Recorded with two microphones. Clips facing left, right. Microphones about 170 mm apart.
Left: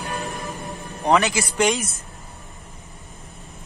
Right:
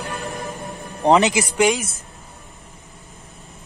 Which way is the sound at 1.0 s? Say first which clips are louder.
Right 4 dB; 20° right (ahead or behind).